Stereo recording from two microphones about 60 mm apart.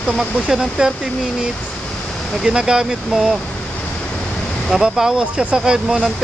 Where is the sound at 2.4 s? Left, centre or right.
Centre.